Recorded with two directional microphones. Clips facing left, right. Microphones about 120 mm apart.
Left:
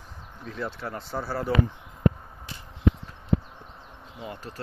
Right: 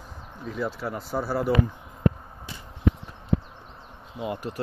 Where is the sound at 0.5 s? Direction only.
5° right (ahead or behind).